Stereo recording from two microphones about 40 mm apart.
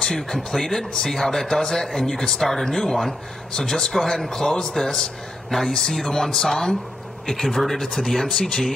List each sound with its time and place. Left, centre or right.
0.0 s speech: centre